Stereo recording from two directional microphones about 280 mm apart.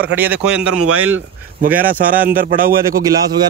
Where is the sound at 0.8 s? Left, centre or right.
Right.